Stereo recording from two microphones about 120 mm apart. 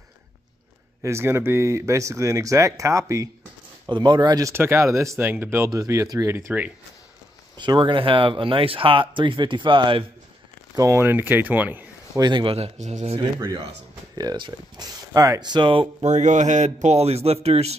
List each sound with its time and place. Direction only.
1.0 s speech: 20° right (ahead or behind)
3.9 s speech: 35° right (ahead or behind); by 5.7 s 20° right (ahead or behind)
5.7 s speech: 30° right (ahead or behind)
7.5 s speech: 40° right (ahead or behind)
10.8 s speech: 20° right (ahead or behind)
12.2 s speech: 40° right (ahead or behind)
12.5 s a man's voice: 65° right (ahead or behind)
14.1 s speech: 35° right (ahead or behind)
16.0 s speech: 80° right; by 17.7 s 60° right (ahead or behind)